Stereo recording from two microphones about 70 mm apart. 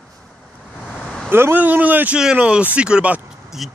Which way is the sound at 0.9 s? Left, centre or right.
Centre.